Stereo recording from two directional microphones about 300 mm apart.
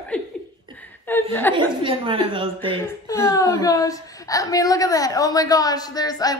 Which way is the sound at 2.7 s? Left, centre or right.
Centre.